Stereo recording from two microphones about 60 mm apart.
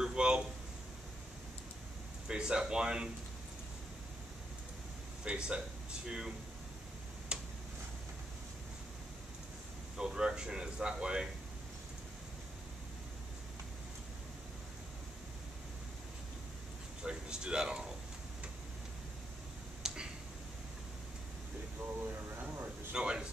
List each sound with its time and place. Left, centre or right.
0.0 s a sound: centre
2.2 s speech: centre
5.2 s speech: centre
7.3 s tick-tock: centre
9.9 s speech: centre
17.0 s speech: centre
19.8 s finger snapping: centre
22.9 s a sound: centre